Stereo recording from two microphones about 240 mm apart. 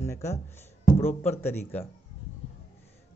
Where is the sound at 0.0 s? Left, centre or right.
Centre.